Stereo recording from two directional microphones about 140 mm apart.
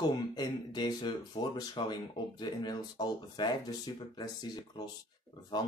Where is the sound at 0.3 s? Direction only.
30° left (ahead or behind).